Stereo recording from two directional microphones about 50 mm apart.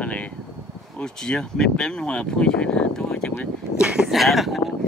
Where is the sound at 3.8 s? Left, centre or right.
Centre.